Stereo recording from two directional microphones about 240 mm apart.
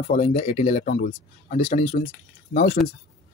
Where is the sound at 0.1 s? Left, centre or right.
Left.